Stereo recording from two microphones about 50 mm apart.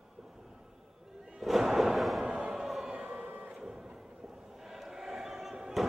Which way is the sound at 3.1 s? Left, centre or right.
Right.